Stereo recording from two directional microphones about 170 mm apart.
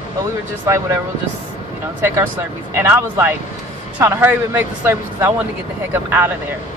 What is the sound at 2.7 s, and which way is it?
Speech, 15° right (ahead or behind).